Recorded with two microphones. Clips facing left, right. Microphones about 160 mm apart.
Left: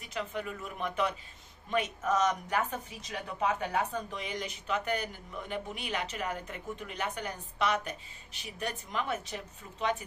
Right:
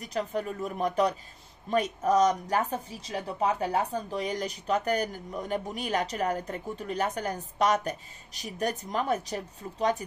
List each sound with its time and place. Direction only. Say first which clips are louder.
0.0 s speech: right 6 dB; 40° right (ahead or behind)